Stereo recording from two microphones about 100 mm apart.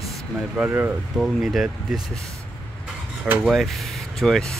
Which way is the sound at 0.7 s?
20° right (ahead or behind).